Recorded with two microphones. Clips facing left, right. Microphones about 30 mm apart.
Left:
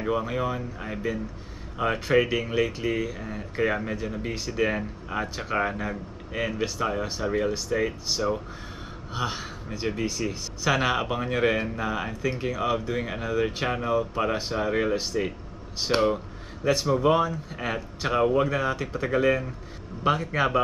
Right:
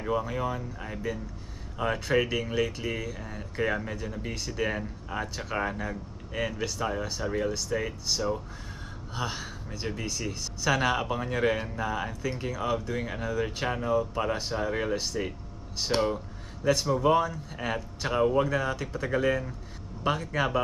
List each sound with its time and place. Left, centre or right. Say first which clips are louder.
0.0 s speech: left 3 dB; left